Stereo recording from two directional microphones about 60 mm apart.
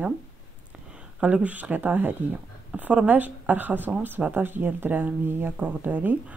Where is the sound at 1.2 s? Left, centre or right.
Right.